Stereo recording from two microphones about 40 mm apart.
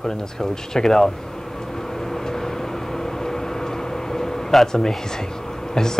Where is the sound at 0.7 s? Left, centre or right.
Centre.